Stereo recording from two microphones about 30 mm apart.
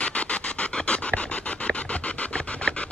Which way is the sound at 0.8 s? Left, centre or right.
Left.